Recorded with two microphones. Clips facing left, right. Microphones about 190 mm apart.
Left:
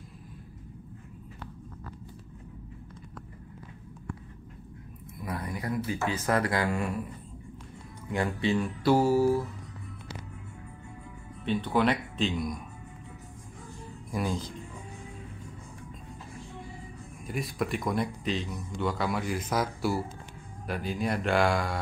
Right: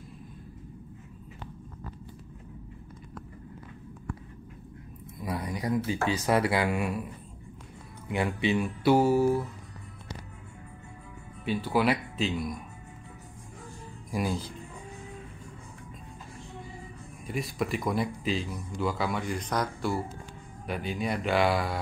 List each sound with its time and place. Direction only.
5.2 s a sound: 15° right (ahead or behind)
6.1 s speech: 15° right (ahead or behind)
8.1 s speech: 20° right (ahead or behind)
9.1 s speech: centre (ahead or behind)
11.4 s speech: 5° right (ahead or behind)
14.1 s speech: 10° right (ahead or behind)
17.3 s speech: centre (ahead or behind)